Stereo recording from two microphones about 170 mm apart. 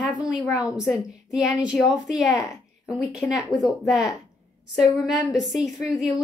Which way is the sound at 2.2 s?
20° left (ahead or behind).